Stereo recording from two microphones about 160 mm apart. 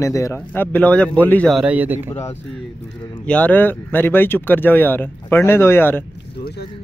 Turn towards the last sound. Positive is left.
turn(degrees=15)  # may be behind; listen again after turning